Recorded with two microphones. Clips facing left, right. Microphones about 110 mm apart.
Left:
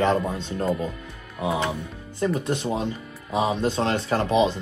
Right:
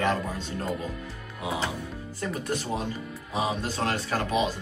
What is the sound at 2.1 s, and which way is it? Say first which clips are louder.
Speech: left 7 dB; 25° left (ahead or behind).